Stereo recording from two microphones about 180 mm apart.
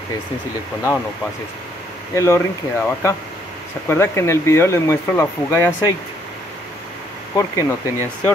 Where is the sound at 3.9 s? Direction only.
15° left (ahead or behind).